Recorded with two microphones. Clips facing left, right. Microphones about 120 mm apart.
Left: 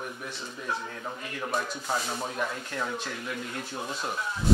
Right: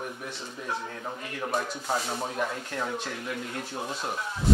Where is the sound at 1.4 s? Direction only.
35° right (ahead or behind).